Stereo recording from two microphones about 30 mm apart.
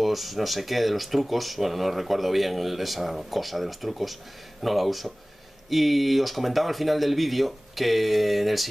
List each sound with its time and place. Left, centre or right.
0.0 s speech: centre